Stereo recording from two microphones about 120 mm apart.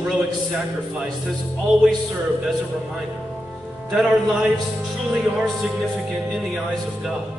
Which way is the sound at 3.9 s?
5° right (ahead or behind).